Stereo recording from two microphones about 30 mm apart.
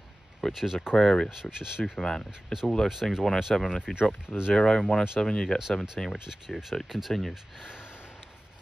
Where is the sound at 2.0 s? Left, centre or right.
Left.